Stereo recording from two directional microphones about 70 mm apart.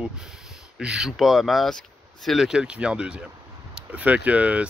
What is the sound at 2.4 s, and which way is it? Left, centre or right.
Speech, centre.